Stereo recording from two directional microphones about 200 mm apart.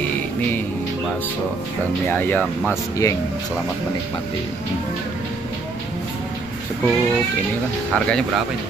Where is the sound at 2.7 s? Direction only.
15° left (ahead or behind).